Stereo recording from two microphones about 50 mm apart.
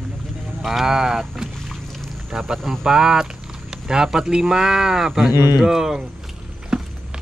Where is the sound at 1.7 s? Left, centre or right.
Centre.